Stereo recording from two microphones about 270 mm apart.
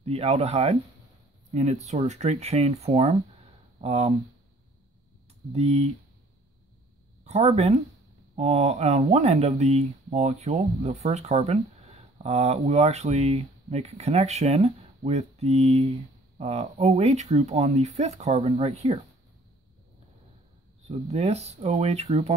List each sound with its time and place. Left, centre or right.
0.0 s speech: right
5.5 s speech: right
7.2 s speech: right
21.1 s speech: right